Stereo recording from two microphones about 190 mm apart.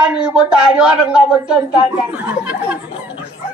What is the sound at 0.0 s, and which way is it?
Speech, 5° right (ahead or behind).